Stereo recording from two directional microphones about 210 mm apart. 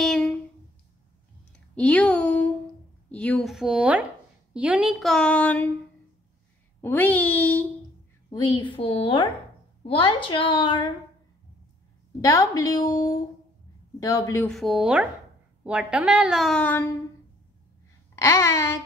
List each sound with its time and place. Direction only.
0.0 s a sound: 5° left (ahead or behind)
1.8 s a sound: 5° left (ahead or behind)
3.1 s a woman's voice: 5° left (ahead or behind)
6.8 s a woman's voice: 10° left (ahead or behind)
8.3 s a woman's voice: 20° left (ahead or behind)
12.2 s a woman's voice: 15° left (ahead or behind)
14.5 s a woman's voice: centre (ahead or behind)
18.1 s babbling: 15° left (ahead or behind)